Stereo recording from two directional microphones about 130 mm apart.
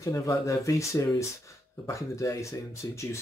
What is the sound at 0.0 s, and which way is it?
Speech, 25° left (ahead or behind).